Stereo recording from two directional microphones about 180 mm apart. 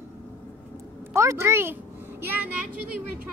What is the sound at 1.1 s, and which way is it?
A child's voice, 15° right (ahead or behind).